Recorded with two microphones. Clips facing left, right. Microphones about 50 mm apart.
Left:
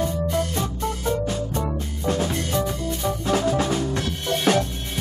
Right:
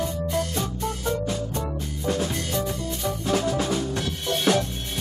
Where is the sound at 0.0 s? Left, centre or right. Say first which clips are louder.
Left 3 dB; left.